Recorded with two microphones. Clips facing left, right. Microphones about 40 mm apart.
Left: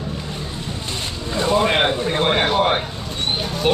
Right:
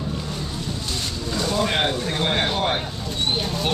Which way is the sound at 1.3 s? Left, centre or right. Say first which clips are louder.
Left 5 dB; left.